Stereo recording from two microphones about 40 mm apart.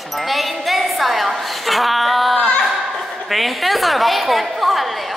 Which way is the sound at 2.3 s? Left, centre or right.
Left.